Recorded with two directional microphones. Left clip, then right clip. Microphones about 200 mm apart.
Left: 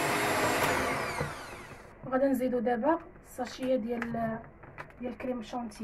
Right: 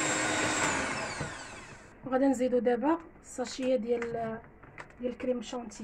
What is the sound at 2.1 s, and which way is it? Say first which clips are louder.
Speech: right 1 dB; 50° right (ahead or behind).